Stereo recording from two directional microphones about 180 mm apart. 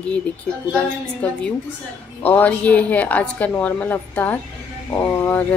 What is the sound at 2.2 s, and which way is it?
Speech, 10° left (ahead or behind).